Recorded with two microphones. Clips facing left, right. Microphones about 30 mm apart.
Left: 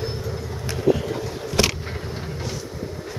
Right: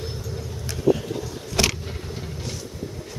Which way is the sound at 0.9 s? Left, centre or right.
Left.